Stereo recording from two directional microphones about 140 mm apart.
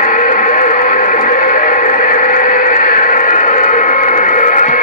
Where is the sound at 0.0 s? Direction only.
70° left (ahead or behind).